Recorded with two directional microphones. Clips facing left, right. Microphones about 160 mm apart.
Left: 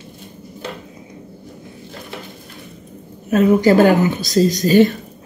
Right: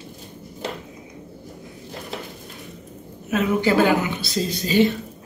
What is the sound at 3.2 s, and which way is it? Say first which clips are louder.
Speech: left 7 dB; 40° left (ahead or behind).